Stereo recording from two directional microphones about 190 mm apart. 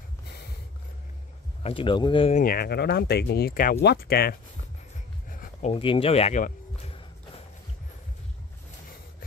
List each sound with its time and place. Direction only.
1.6 s speech: 30° left (ahead or behind)
2.3 s speech: 50° left (ahead or behind)
5.3 s a sound: 45° left (ahead or behind)
5.7 s speech: 30° left (ahead or behind)